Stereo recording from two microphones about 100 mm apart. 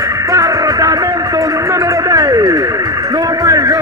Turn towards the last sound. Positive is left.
turn(degrees=-35)  # may be behind; listen again after turning